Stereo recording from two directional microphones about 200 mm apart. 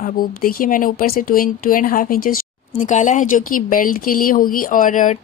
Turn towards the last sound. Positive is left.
turn(degrees=40)  # may be behind; listen again after turning